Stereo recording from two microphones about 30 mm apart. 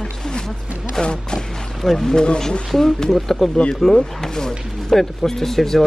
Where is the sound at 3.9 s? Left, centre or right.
Left.